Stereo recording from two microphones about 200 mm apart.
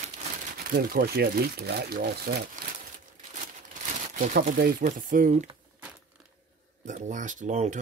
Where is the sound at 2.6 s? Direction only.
40° right (ahead or behind).